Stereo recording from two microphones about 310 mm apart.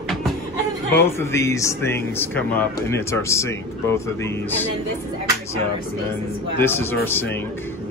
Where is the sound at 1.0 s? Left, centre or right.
Centre.